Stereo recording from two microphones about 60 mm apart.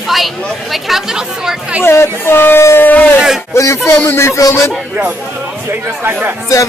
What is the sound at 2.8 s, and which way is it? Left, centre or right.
Speech, left.